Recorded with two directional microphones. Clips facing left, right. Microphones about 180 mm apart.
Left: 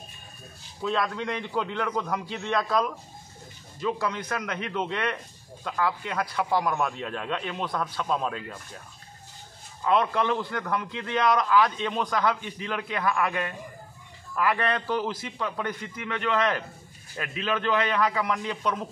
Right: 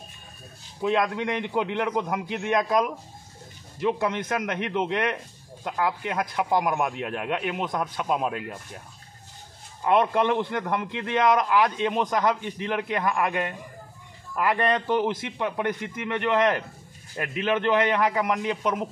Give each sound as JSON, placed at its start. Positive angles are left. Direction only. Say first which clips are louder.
{"t": 0.8, "sound": "a man's voice", "louder": "right 4 dB", "side_deg": -15}
{"t": 9.8, "sound": "a man's voice", "louder": "right 3 dB", "side_deg": -20}
{"t": 14.3, "sound": "a man's voice", "louder": "right 2 dB", "side_deg": -15}